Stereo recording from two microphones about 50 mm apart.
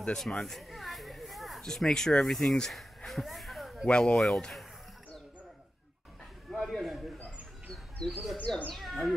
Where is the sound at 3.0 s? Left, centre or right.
Centre.